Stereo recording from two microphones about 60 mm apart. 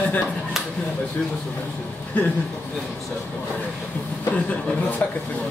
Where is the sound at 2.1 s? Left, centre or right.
Left.